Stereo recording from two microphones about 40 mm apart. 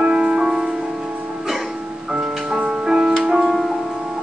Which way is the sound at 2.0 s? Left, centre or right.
Centre.